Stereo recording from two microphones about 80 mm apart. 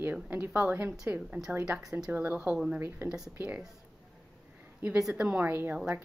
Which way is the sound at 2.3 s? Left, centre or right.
Centre.